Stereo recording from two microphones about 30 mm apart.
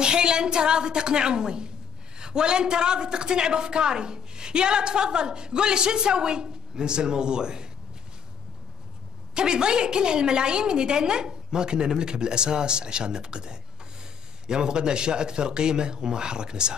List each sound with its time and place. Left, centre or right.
0.0 s a woman's voice: right
9.3 s a woman's voice: right